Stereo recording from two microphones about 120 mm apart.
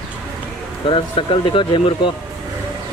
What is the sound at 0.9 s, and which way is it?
Speech, 45° left (ahead or behind).